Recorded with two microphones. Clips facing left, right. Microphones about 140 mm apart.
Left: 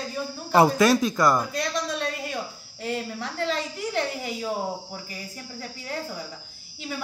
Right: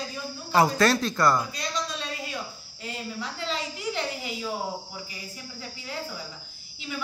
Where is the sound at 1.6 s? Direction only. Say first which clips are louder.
Left 5 dB; 60° left (ahead or behind).